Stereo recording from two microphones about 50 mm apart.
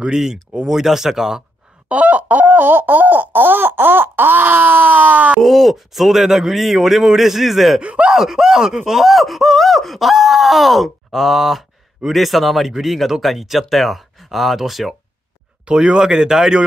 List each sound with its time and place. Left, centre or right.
0.0 s speech: centre
1.9 s a sound: right
5.4 s speech: centre
7.8 s speech: right
8.1 s speech: centre
15.6 s speech: centre